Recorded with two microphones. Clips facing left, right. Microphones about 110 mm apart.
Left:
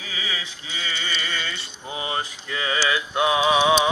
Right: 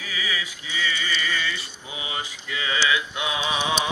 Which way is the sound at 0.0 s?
30° left (ahead or behind).